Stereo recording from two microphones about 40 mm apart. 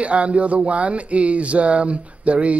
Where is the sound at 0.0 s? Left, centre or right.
Right.